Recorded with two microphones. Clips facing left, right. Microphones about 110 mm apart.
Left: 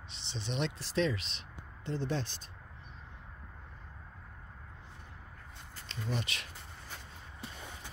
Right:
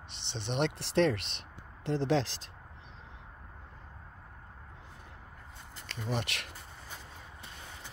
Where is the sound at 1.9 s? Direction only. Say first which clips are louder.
Right 6 dB; 90° right.